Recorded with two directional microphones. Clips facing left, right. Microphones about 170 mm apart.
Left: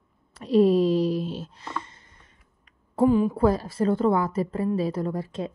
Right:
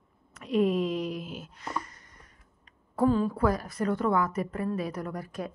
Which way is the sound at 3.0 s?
15° left (ahead or behind).